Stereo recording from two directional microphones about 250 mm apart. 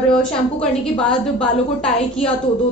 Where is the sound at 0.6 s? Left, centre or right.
Centre.